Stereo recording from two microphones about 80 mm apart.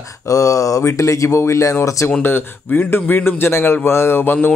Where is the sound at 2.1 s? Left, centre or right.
Left.